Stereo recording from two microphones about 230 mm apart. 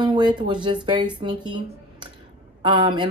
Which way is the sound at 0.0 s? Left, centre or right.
Centre.